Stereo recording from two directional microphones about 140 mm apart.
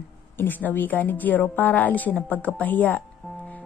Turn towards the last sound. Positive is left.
turn(degrees=10)  # may be behind; listen again after turning